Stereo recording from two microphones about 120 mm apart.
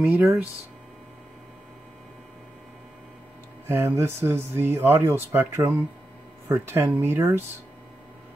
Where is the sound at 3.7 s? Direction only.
20° right (ahead or behind).